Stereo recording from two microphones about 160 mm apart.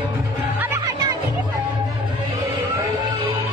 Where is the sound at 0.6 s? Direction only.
15° right (ahead or behind).